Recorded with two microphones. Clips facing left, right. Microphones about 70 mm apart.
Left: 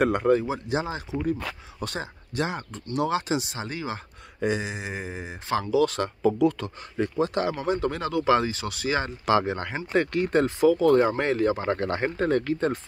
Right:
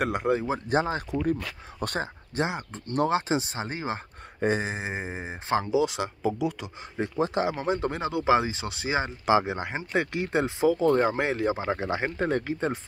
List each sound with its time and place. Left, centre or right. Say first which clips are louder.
0.0 s speech: left 4 dB; centre
0.5 s speech: right 2 dB; right
2.4 s speech: even; right
2.9 s speech: right 1 dB; right; by 6.7 s centre
7.0 s speech: left 1 dB; right